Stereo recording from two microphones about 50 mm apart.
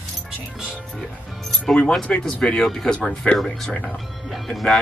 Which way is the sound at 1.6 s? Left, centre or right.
Centre.